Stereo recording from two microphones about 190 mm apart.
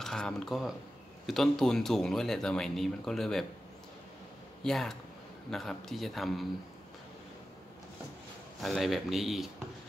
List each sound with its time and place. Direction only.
0.0 s speech: centre (ahead or behind)
4.6 s speech: centre (ahead or behind)
8.5 s speech: centre (ahead or behind)